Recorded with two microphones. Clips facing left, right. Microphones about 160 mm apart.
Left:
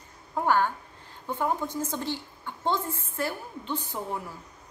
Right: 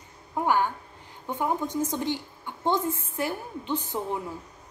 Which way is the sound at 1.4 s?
15° right (ahead or behind).